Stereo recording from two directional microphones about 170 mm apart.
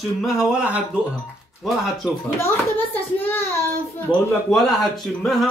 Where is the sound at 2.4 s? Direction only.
10° left (ahead or behind).